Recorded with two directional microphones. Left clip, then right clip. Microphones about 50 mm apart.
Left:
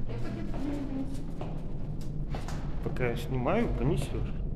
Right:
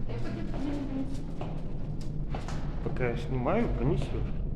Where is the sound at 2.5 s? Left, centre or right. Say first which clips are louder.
Right 1 dB; centre.